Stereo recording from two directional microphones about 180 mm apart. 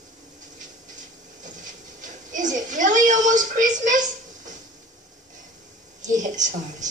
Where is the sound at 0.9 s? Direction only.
45° right (ahead or behind).